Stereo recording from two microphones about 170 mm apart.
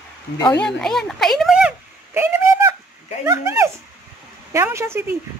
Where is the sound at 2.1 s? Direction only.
15° right (ahead or behind).